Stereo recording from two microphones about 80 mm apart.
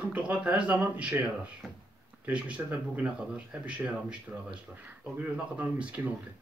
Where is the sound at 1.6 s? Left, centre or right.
Centre.